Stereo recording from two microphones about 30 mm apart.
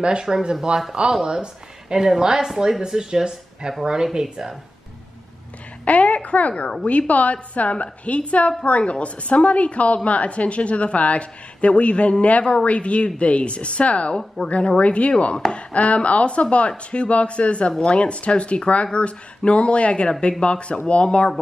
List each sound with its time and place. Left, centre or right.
0.0 s speech: right
1.2 s speech: right
5.9 s a woman's voice: left
14.4 s speech: left
14.8 s a woman's voice: left